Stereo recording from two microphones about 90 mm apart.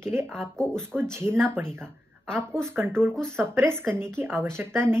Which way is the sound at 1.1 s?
25° right (ahead or behind).